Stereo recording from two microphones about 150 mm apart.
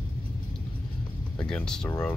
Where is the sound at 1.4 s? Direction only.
5° left (ahead or behind).